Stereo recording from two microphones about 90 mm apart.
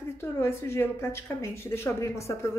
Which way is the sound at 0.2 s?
30° left (ahead or behind).